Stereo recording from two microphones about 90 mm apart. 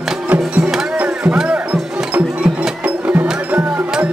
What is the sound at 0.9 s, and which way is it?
Music, 15° right (ahead or behind).